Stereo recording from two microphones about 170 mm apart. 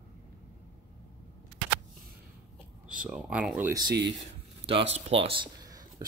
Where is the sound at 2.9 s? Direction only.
5° right (ahead or behind).